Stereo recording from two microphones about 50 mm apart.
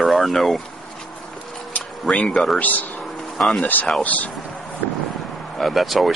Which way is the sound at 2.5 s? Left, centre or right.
Left.